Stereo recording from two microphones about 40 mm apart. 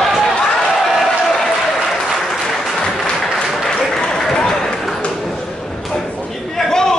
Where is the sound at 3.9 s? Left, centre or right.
Centre.